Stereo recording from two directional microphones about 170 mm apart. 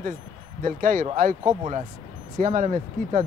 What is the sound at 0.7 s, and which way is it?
Speech, 50° right (ahead or behind).